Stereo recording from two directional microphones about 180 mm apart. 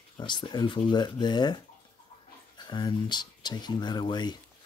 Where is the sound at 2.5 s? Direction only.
25° left (ahead or behind).